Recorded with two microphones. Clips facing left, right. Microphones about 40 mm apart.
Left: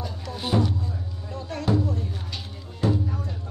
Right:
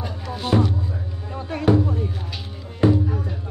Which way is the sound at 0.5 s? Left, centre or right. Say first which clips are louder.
Right 4 dB; right.